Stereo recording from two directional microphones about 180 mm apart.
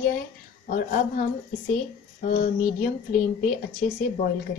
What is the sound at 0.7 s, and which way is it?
Speech, 50° left (ahead or behind).